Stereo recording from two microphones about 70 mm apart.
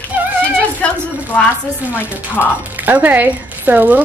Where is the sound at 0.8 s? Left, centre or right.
Centre.